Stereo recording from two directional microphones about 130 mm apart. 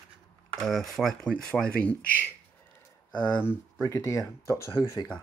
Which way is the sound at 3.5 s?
20° left (ahead or behind).